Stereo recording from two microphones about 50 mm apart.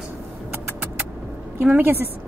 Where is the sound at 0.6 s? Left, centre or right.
Right.